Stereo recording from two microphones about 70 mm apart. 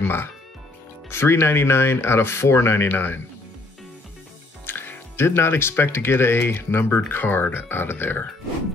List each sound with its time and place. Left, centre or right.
0.0 s speech: left
4.6 s speech: left